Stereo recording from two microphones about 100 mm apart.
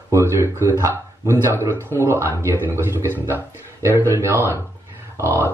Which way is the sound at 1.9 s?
25° right (ahead or behind).